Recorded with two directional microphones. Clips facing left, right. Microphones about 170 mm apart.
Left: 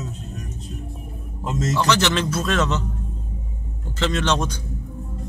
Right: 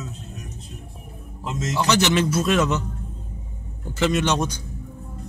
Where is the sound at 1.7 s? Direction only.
15° right (ahead or behind).